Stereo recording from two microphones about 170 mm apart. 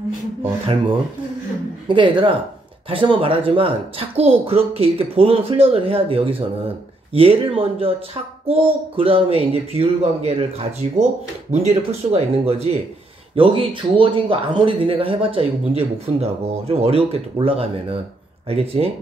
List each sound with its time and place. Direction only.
1.9 s speech: 30° right (ahead or behind)